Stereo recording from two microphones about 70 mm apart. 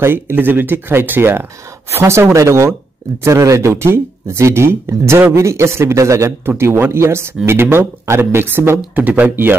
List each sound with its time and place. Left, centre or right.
0.0 s speech: right